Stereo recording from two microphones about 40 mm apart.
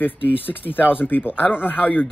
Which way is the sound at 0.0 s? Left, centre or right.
Left.